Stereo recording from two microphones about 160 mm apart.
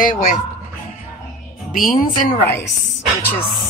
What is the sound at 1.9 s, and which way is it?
Speech, 60° left (ahead or behind).